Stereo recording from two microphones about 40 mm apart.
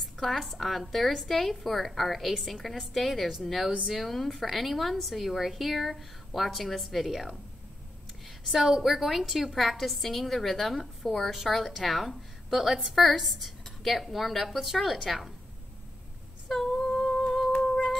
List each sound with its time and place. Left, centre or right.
0.0 s a woman's voice: centre
8.5 s a woman's voice: centre
16.6 s humming: centre
17.5 s humming: left